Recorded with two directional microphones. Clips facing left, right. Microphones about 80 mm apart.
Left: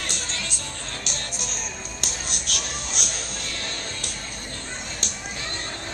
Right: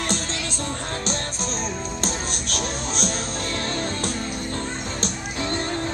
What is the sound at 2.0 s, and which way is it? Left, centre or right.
Music, right.